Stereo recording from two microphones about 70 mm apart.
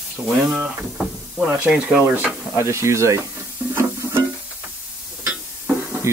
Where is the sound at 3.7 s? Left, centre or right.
Right.